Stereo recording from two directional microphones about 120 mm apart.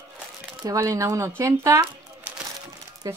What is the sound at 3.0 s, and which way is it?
Speech, 30° right (ahead or behind).